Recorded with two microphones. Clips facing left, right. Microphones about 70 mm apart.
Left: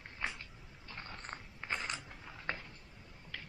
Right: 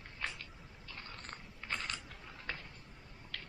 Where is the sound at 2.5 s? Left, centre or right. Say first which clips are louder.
Left 4 dB; left.